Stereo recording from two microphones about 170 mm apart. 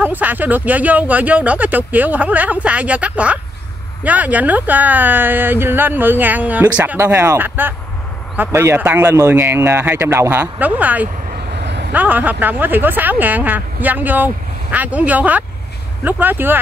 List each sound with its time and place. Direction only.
0.0 s speech: 10° right (ahead or behind)
11.3 s vehicle: 75° right (ahead or behind)
11.9 s speech: 10° right (ahead or behind)